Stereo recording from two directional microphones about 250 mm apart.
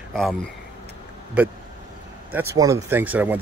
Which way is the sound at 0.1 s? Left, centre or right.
Centre.